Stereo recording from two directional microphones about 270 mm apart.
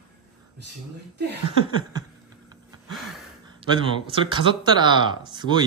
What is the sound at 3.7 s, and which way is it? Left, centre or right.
Speech, centre.